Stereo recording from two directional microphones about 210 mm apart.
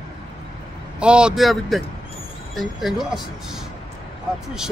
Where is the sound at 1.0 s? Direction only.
5° right (ahead or behind).